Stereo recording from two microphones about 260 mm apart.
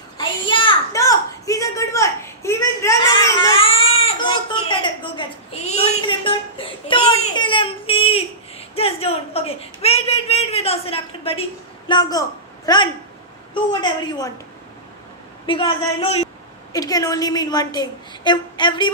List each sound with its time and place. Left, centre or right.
0.2 s a sound: centre
11.9 s a woman's voice: centre
15.4 s a woman's voice: centre